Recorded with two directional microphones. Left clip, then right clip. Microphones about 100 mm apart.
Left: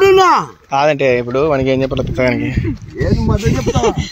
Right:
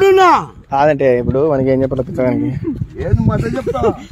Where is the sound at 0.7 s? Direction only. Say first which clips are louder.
Right 1 dB; 80° right.